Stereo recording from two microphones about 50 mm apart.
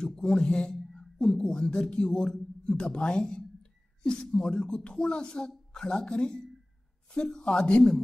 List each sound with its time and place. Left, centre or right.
0.0 s a man's voice: centre